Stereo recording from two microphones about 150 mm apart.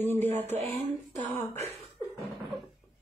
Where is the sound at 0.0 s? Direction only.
15° left (ahead or behind).